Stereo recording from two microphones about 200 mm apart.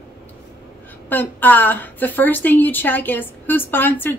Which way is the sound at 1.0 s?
10° left (ahead or behind).